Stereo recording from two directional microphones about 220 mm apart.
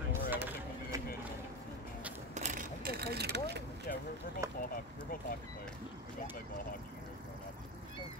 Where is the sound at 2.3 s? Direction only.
35° right (ahead or behind).